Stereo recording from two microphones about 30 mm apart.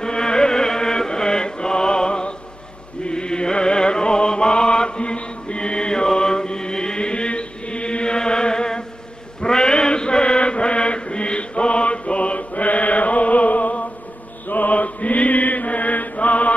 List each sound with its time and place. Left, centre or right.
0.0 s chant: left
3.1 s music: left
9.4 s chant: left
14.5 s chant: left